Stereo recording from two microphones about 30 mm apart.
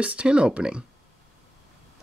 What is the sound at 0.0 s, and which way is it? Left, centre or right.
Speech, right.